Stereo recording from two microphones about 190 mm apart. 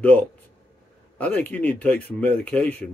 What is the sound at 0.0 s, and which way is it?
Speech, 10° left (ahead or behind).